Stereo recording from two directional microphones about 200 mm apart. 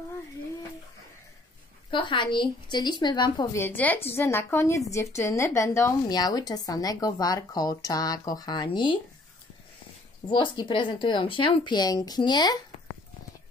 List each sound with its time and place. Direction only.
1.9 s a woman's voice: 25° left (ahead or behind)
10.2 s a woman's voice: 25° left (ahead or behind)